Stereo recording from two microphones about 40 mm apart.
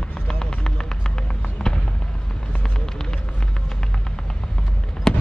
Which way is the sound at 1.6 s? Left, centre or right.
Centre.